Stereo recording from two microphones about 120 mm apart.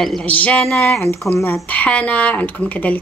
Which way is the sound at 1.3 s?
20° left (ahead or behind).